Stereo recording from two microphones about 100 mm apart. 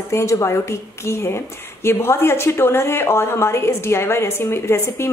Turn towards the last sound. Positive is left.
turn(degrees=25)  # may be behind; listen again after turning